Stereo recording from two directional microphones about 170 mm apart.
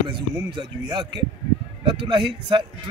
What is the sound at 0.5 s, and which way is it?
A man's voice, 25° right (ahead or behind).